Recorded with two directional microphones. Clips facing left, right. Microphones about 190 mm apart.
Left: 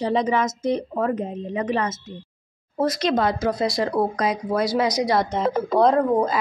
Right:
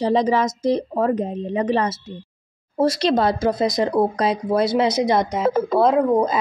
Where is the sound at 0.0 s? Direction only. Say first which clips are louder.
Right 3 dB; 35° right (ahead or behind).